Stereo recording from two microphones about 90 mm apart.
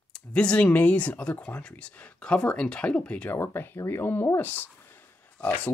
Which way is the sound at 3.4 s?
25° left (ahead or behind).